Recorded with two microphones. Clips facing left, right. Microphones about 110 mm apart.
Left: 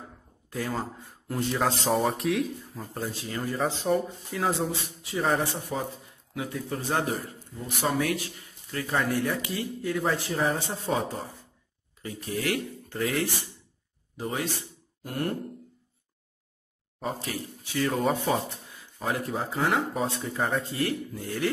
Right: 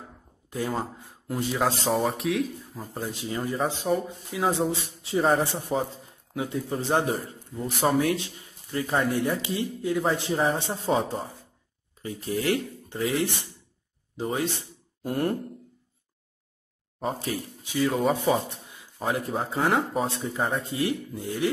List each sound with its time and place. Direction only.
1.3 s speech: 5° right (ahead or behind)
3.1 s speech: 20° right (ahead or behind)
3.5 s speech: 5° right (ahead or behind)
4.8 s a man's voice: 25° right (ahead or behind)
17.0 s a man's voice: 30° right (ahead or behind)
17.6 s speech: 15° right (ahead or behind)
18.7 s a man's voice: 25° right (ahead or behind)